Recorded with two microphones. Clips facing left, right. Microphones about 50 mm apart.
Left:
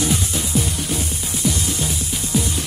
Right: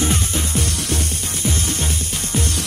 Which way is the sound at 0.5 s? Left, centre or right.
Right.